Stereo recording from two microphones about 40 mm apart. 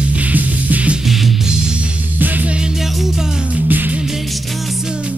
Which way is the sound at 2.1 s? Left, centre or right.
Right.